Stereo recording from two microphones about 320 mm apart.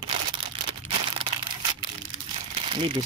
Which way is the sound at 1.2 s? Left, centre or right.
Centre.